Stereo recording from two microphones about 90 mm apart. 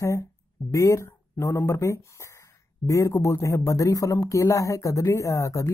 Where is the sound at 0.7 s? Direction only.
35° left (ahead or behind).